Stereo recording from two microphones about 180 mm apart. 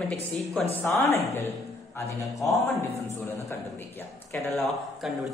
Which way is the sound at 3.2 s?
15° left (ahead or behind).